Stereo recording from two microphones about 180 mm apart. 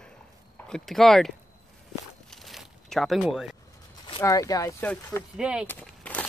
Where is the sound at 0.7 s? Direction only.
5° left (ahead or behind).